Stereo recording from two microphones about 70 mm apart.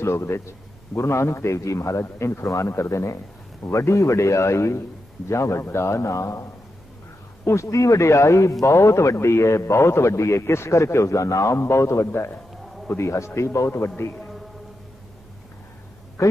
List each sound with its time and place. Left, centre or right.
0.0 s a man's voice: left
16.2 s a man's voice: left